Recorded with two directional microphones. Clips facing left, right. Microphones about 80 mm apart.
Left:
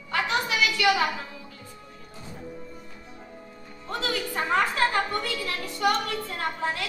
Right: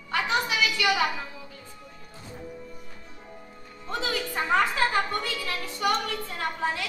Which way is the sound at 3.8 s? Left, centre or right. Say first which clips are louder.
Even; right.